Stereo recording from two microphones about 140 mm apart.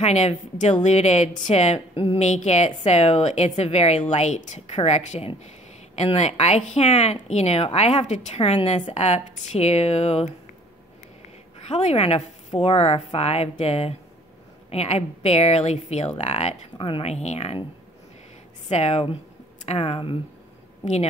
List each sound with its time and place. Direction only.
0.0 s a woman's voice: 50° left (ahead or behind)
11.6 s speech: 50° left (ahead or behind)
16.7 s speech: 40° left (ahead or behind)
18.7 s speech: 50° left (ahead or behind)